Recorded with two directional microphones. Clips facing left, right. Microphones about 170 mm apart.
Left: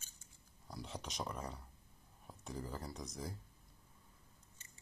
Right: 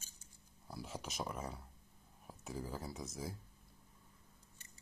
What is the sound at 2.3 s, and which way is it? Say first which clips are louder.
Speech: right 1 dB; 5° right (ahead or behind).